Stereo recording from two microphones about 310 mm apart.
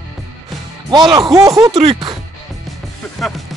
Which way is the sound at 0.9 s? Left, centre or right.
Centre.